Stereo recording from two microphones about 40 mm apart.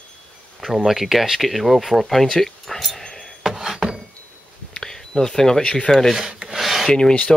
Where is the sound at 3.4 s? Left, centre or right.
Centre.